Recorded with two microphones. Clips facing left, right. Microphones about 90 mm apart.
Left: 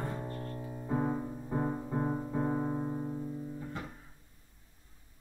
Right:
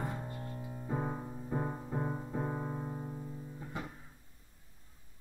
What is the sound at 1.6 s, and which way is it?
Music, 15° left (ahead or behind).